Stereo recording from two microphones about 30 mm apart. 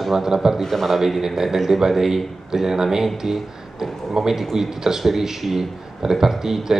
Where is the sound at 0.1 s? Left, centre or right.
Centre.